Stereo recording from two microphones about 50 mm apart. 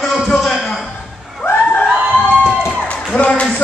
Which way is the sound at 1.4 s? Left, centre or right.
Left.